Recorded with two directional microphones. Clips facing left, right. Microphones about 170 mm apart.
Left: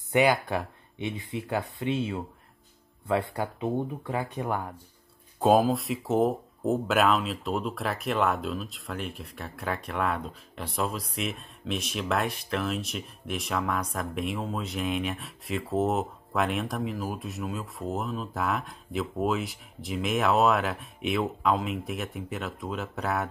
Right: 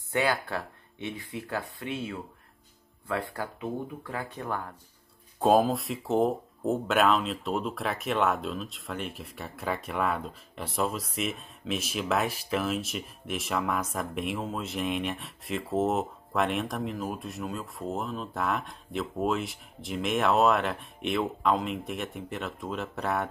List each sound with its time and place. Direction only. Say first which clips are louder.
0.1 s speech: left 5 dB; 15° left (ahead or behind)
5.4 s speech: left 1 dB; centre (ahead or behind)